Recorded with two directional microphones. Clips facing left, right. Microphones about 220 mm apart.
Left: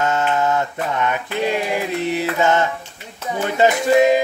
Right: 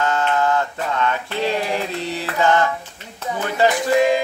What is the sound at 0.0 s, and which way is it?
Mantra, 20° left (ahead or behind).